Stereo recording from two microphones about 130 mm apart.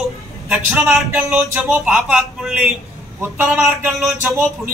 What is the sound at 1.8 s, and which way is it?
A man's voice, 5° right (ahead or behind).